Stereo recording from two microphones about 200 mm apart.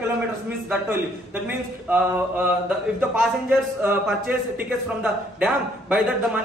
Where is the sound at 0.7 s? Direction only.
10° right (ahead or behind).